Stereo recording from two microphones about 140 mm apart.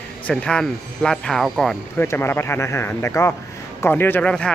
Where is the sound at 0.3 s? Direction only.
5° left (ahead or behind).